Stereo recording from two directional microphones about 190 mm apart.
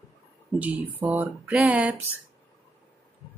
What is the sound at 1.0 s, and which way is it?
Speech, 10° right (ahead or behind).